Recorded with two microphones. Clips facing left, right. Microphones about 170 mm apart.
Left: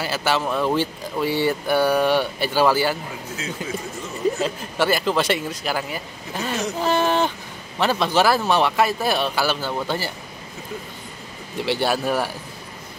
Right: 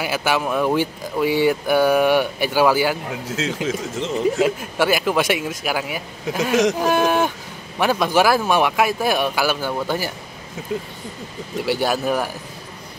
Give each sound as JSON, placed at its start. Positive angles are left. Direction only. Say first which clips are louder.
{"t": 0.0, "sound": "speech", "louder": "right 1 dB", "side_deg": -10}
{"t": 3.3, "sound": "speech", "louder": "right 7 dB", "side_deg": -90}
{"t": 4.4, "sound": "speech", "louder": "right 4 dB", "side_deg": -10}
{"t": 11.6, "sound": "speech", "louder": "right 1 dB", "side_deg": -10}